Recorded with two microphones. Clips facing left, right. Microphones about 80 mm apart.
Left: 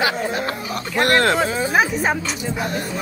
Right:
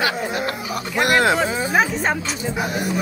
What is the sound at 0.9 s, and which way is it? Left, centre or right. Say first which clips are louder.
Speech: even; centre.